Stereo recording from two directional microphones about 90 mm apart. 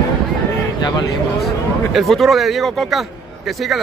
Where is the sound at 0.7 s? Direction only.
50° left (ahead or behind).